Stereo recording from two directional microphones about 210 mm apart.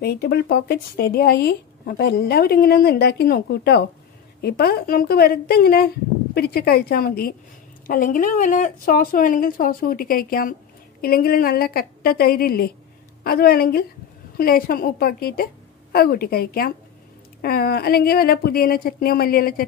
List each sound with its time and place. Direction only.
0.0 s speech: 50° left (ahead or behind)